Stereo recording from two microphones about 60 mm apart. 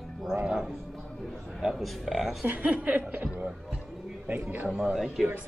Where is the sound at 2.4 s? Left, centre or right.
Right.